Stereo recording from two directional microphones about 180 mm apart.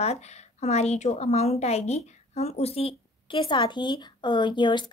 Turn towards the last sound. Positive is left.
turn(degrees=25)  # may be behind; listen again after turning